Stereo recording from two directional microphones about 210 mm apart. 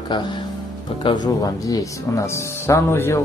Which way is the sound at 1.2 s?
15° left (ahead or behind).